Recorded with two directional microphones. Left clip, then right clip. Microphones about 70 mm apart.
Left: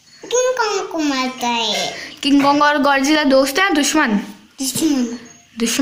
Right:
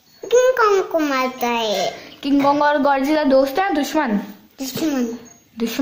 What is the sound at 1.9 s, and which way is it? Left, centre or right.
Speech, centre.